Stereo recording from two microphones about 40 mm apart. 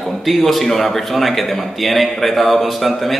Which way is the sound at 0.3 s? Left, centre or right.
Centre.